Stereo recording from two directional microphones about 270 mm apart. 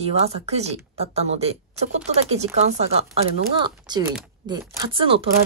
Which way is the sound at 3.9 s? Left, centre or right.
Centre.